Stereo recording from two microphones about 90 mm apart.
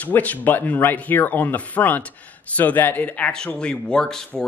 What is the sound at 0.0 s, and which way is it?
A man's voice, 20° left (ahead or behind).